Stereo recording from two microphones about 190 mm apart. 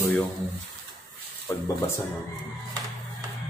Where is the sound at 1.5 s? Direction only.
15° left (ahead or behind).